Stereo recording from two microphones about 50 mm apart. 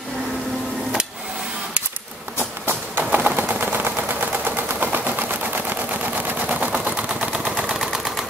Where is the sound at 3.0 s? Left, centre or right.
Right.